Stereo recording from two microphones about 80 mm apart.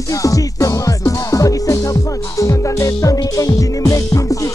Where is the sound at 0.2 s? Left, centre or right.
Left.